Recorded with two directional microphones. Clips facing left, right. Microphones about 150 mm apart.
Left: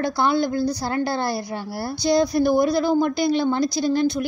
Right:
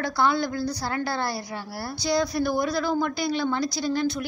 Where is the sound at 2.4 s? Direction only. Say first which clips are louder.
Left 6 dB; 20° left (ahead or behind).